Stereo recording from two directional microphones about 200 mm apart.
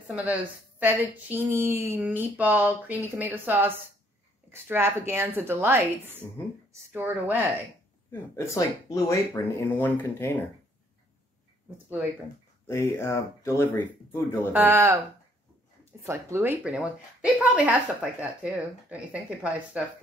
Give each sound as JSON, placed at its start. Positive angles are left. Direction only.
{"t": 0.1, "sound": "speech", "side_deg": -5}
{"t": 8.1, "sound": "speech", "side_deg": 15}
{"t": 12.6, "sound": "speech", "side_deg": 15}
{"t": 14.5, "sound": "speech", "side_deg": -10}